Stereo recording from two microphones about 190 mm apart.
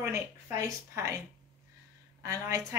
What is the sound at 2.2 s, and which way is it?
Speech, 15° right (ahead or behind).